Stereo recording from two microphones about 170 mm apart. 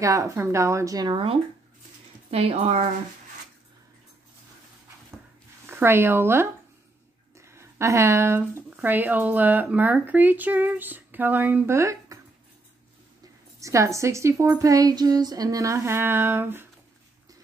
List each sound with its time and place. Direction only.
0.0 s a woman's voice: 20° right (ahead or behind); by 2.9 s 40° right (ahead or behind)
5.1 s a sound: 15° right (ahead or behind)
5.7 s speech: 15° right (ahead or behind)
13.6 s speech: 20° right (ahead or behind)